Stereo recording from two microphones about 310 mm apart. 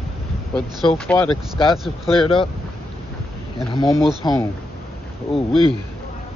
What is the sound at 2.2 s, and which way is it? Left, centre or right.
Speech, centre.